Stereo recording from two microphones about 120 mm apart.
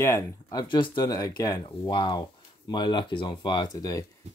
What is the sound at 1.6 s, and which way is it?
Speech, 45° left (ahead or behind).